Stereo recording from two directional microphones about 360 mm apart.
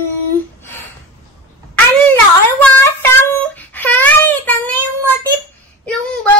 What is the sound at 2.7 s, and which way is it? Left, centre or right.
Child singing, centre.